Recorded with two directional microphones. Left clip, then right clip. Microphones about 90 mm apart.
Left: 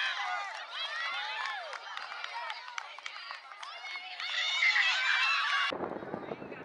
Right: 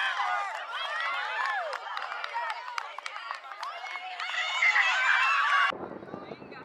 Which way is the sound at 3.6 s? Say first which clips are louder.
Right 3 dB; 35° right (ahead or behind).